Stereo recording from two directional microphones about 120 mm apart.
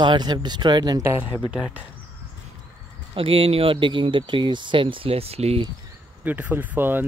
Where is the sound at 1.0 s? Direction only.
20° right (ahead or behind).